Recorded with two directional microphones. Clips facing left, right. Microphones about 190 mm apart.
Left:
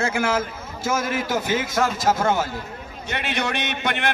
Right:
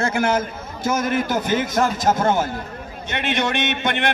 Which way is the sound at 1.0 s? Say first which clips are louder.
Right 3 dB; 55° right (ahead or behind).